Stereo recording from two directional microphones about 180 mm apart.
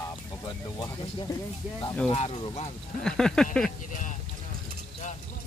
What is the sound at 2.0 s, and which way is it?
Speech, 30° left (ahead or behind).